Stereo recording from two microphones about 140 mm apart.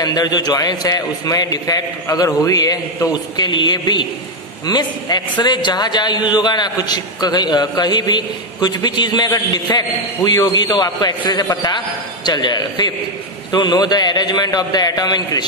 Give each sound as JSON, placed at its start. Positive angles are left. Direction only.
{"t": 0.0, "sound": "a man's voice", "side_deg": 30}